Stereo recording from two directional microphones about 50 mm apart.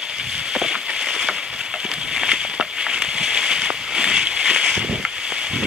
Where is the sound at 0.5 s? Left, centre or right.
Centre.